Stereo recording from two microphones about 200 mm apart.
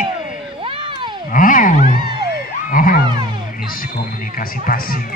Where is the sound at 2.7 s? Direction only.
45° left (ahead or behind).